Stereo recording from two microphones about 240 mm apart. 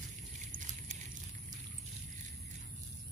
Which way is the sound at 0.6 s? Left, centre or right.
Right.